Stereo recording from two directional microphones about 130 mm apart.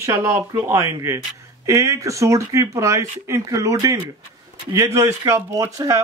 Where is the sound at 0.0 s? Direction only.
20° right (ahead or behind).